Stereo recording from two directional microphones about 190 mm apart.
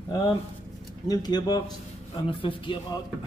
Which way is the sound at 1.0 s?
20° left (ahead or behind).